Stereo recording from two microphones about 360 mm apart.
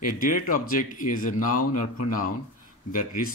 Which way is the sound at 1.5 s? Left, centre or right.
Left.